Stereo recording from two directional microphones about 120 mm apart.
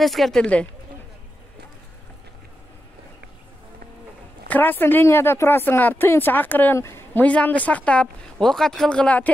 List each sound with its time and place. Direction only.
0.0 s speech: centre (ahead or behind)
4.5 s speech: 15° left (ahead or behind)